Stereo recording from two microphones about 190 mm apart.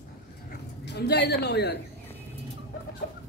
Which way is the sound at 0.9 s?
60° left (ahead or behind).